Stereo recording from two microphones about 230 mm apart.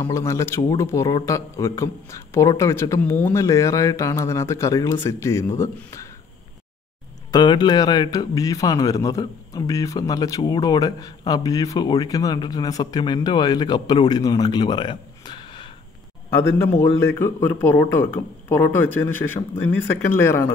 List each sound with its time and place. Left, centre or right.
0.0 s a man's voice: centre
7.2 s a man's voice: centre
16.3 s a man's voice: centre